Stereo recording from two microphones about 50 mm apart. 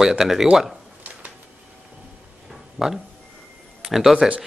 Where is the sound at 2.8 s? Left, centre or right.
Centre.